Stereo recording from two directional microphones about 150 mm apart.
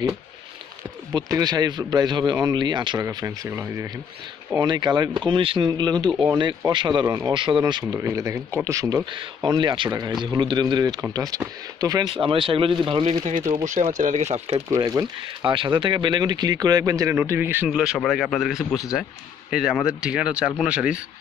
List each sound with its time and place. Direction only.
1.1 s speech: 25° right (ahead or behind)
4.6 s speech: 30° right (ahead or behind)
9.1 s speech: 35° right (ahead or behind)
13.2 s speech: 55° right (ahead or behind)
14.7 s speech: 25° right (ahead or behind); by 21.0 s 5° right (ahead or behind)